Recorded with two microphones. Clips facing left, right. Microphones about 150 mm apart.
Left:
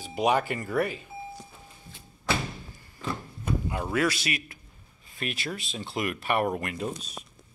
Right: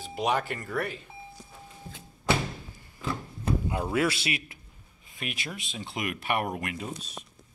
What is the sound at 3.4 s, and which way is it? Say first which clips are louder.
Speech: right 1 dB; 25° right (ahead or behind).